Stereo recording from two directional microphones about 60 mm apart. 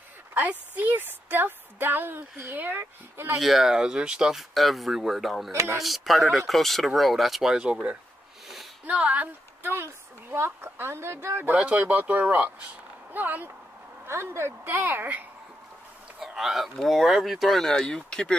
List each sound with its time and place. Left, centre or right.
0.3 s a woman's voice: right
3.3 s speech: centre
5.5 s a woman's voice: right
5.8 s a woman's voice: centre; by 9.7 s right
9.8 s a woman's voice: right
11.5 s speech: right
14.0 s speech: right
16.2 s speech: centre